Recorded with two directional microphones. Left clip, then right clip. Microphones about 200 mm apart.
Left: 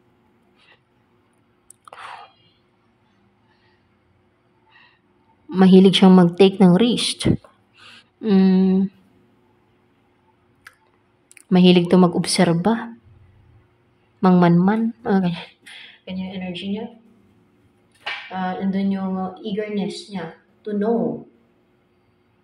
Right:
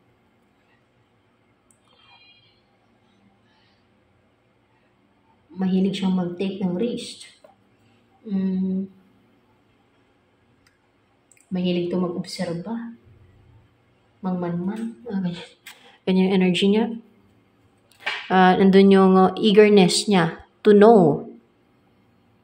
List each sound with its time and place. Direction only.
5.5 s a woman's voice: 35° left (ahead or behind)
8.3 s a sound: 50° left (ahead or behind)
11.5 s a woman's voice: 40° left (ahead or behind)
14.2 s a woman's voice: 35° left (ahead or behind)
15.2 s speech: 10° left (ahead or behind)
15.8 s speech: 15° right (ahead or behind)
18.3 s speech: 35° right (ahead or behind)